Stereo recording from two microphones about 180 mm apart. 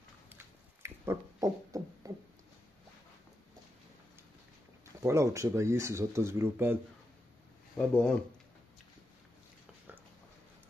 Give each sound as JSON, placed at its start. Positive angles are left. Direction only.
{"t": 0.8, "sound": "a sound", "side_deg": -15}
{"t": 5.0, "sound": "speech", "side_deg": -15}
{"t": 7.7, "sound": "speech", "side_deg": 5}